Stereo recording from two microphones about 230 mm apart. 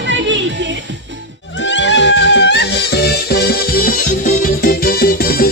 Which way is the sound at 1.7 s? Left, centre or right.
Left.